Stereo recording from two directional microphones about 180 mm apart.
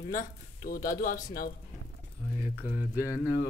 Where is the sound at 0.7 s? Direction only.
50° left (ahead or behind).